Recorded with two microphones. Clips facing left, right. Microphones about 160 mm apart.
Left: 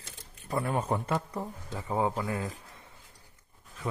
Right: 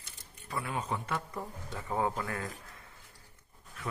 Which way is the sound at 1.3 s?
20° left (ahead or behind).